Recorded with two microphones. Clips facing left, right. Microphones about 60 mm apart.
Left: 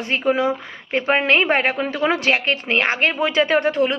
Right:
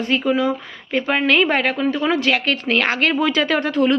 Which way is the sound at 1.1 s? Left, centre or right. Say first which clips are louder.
Even; left.